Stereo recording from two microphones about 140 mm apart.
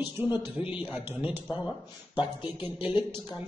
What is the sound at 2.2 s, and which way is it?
Speech, 35° left (ahead or behind).